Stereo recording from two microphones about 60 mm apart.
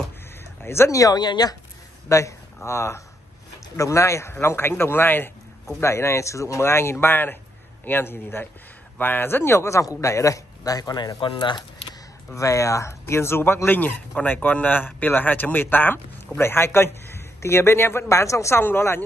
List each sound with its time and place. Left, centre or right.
0.7 s a man's voice: left
0.9 s speech: left
2.0 s a man's voice: left
5.8 s a man's voice: left
12.4 s a man's voice: left
18.6 s speech: left